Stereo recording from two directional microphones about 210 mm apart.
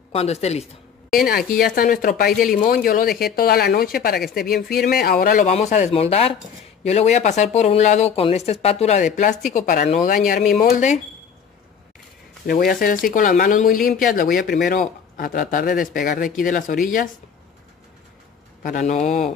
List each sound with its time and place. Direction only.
0.1 s speech: 30° left (ahead or behind)
1.1 s speech: 45° left (ahead or behind)
12.4 s speech: 45° left (ahead or behind)
18.6 s speech: 35° left (ahead or behind)